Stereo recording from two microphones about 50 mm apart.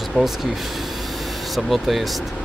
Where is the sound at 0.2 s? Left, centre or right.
Right.